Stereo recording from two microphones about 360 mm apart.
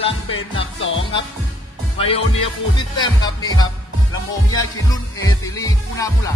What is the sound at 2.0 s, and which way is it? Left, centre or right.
Speech, centre.